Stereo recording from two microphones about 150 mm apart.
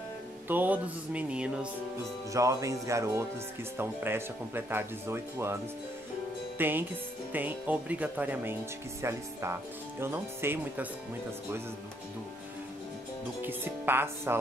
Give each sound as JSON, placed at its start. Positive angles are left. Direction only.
{"t": 0.5, "sound": "speech", "side_deg": -10}
{"t": 2.3, "sound": "speech", "side_deg": -20}
{"t": 6.6, "sound": "speech", "side_deg": -15}
{"t": 13.4, "sound": "speech", "side_deg": -15}